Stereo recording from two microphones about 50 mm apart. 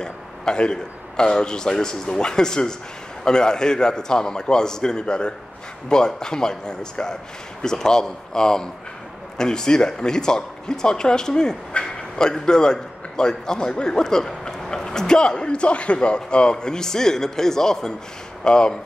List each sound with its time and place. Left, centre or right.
0.0 s a man's voice: centre